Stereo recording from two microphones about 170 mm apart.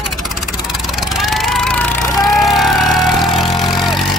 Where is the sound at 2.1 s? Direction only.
20° left (ahead or behind).